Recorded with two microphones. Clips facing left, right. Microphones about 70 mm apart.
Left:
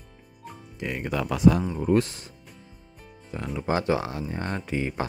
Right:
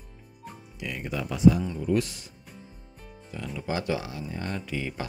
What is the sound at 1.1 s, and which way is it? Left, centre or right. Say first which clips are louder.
Speech: left 1 dB; left.